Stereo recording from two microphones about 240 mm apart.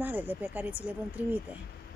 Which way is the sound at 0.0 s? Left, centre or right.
Centre.